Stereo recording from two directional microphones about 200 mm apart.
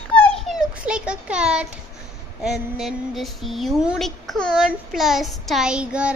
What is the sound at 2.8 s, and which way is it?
Speech, centre (ahead or behind).